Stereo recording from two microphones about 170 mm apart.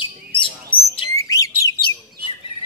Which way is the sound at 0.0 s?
30° left (ahead or behind).